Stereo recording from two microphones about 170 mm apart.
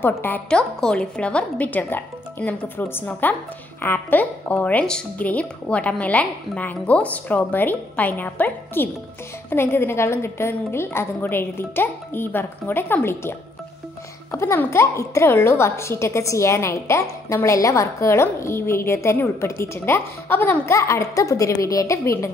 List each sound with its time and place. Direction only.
0.2 s a woman's voice: 10° left (ahead or behind)